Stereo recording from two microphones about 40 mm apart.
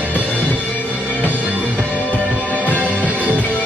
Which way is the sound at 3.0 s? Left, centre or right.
Right.